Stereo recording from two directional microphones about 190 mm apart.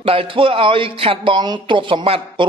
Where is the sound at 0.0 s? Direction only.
30° right (ahead or behind).